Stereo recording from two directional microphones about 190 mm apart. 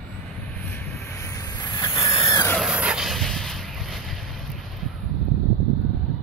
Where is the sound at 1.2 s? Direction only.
20° left (ahead or behind).